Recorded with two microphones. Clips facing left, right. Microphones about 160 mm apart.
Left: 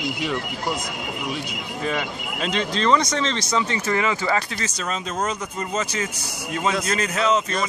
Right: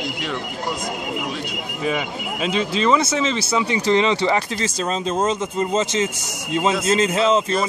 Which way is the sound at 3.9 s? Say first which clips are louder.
Right 8 dB; 20° right (ahead or behind).